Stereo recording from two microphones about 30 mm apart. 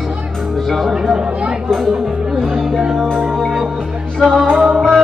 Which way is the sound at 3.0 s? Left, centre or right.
Left.